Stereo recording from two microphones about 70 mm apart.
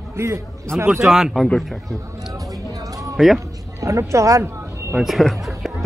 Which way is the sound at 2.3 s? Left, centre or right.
Right.